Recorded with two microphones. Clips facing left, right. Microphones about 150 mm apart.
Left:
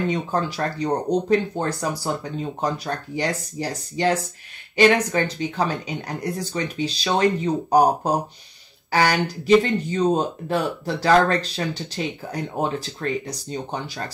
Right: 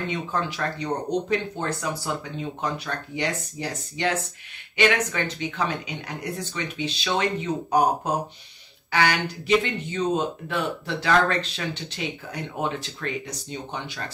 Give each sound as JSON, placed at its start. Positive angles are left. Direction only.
{"t": 0.1, "sound": "speech", "side_deg": 35}